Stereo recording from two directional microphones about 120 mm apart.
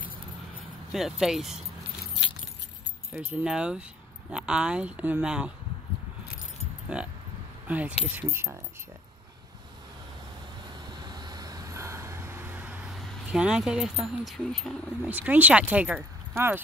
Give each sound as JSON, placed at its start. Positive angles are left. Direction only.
{"t": 0.9, "sound": "speech", "side_deg": -5}
{"t": 3.1, "sound": "speech", "side_deg": -10}
{"t": 6.9, "sound": "speech", "side_deg": -10}
{"t": 10.9, "sound": "vehicle", "side_deg": -35}
{"t": 12.9, "sound": "speech", "side_deg": -5}
{"t": 15.0, "sound": "speech", "side_deg": -15}